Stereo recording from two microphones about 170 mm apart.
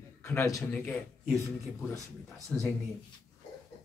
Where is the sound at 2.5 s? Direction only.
5° left (ahead or behind).